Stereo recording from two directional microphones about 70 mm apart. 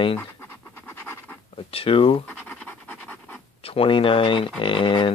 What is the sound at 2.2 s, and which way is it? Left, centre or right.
Scratch, left.